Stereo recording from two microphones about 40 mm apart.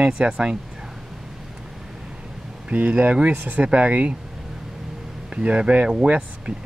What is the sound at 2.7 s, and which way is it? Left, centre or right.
Speech, right.